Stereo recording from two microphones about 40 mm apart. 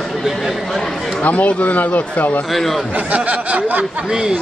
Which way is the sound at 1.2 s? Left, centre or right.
Left.